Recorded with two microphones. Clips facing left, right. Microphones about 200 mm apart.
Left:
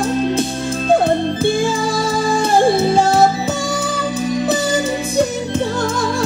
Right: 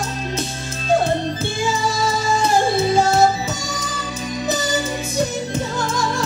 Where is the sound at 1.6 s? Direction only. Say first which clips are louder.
Left 3 dB; 55° left (ahead or behind).